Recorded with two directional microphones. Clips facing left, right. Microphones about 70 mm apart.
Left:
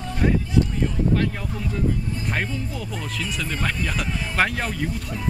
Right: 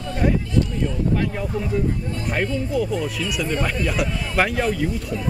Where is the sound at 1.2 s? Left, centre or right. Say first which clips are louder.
Right 2 dB; centre.